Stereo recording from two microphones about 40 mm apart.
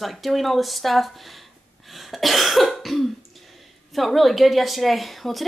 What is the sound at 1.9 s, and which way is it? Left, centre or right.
Cough, centre.